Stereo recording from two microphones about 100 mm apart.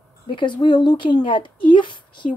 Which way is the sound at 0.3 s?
50° left (ahead or behind).